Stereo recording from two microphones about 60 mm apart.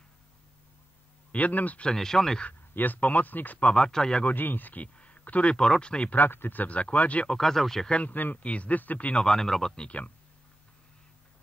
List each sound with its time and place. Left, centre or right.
1.3 s speech: left
1.9 s speech: centre
2.7 s speech: left
3.5 s speech: centre
4.2 s speech: left
4.9 s a sound: left
5.6 s speech: centre
6.1 s speech: left
7.2 s speech: centre
7.9 s speech: left
9.1 s speech: centre
9.8 s speech: left